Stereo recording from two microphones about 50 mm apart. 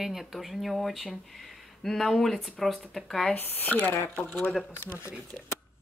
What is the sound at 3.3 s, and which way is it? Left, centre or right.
Speech, left.